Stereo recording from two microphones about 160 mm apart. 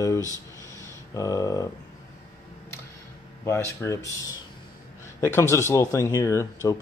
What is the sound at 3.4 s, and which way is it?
Speech, 15° left (ahead or behind).